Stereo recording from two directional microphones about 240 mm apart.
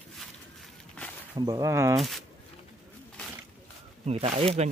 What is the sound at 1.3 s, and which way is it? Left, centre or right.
Speech, centre.